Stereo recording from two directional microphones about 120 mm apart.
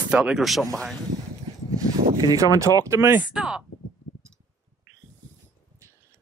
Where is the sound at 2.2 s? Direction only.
30° right (ahead or behind).